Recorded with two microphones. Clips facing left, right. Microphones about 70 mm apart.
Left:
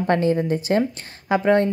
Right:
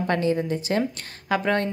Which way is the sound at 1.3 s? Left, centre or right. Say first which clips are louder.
Left 5 dB; left.